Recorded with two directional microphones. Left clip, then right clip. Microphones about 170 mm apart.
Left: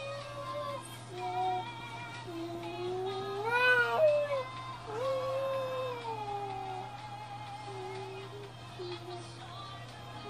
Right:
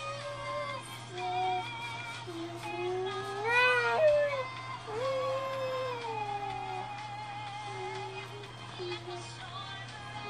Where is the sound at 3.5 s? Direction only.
5° left (ahead or behind).